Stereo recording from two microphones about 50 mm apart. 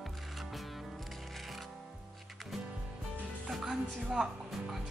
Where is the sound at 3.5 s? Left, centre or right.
Centre.